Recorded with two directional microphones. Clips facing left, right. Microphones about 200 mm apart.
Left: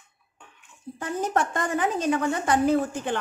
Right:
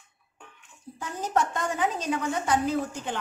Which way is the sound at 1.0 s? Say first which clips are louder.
Left 2 dB; 60° left (ahead or behind).